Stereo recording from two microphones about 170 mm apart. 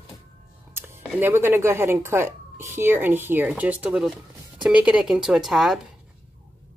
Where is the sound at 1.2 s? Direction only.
15° right (ahead or behind).